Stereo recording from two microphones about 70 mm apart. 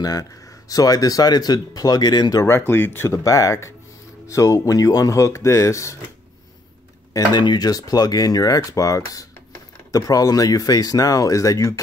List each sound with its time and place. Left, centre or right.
0.0 s speech: left
2.4 s speech: left
3.1 s speech: left
7.3 s speech: left